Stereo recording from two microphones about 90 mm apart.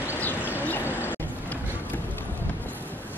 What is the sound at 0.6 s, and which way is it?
Vehicle, 25° left (ahead or behind).